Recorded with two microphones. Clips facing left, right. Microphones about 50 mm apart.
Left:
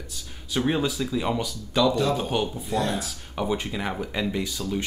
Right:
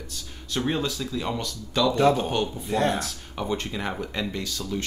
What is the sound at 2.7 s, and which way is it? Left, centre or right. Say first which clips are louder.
Speech: right 3 dB; right.